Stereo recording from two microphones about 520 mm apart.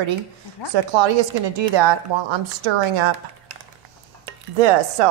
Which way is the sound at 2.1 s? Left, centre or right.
Right.